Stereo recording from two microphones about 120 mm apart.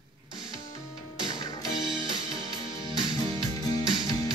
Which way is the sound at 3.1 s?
30° left (ahead or behind).